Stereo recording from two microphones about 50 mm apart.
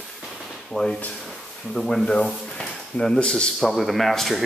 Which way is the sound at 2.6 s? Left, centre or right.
Centre.